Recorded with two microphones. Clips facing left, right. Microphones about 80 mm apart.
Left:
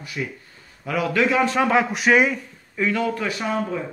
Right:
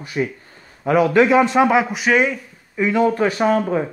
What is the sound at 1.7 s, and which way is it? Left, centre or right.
Speech, centre.